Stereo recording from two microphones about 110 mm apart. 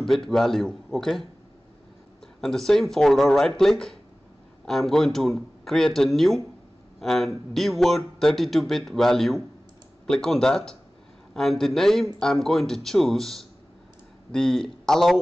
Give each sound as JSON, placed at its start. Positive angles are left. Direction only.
{"t": 0.0, "sound": "a man's voice", "side_deg": 5}
{"t": 2.4, "sound": "a man's voice", "side_deg": 5}